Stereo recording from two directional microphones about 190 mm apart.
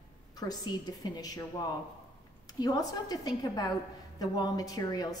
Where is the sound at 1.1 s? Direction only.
20° left (ahead or behind).